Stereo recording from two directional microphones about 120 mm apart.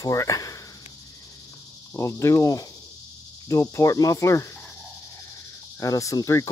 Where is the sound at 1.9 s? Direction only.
25° left (ahead or behind).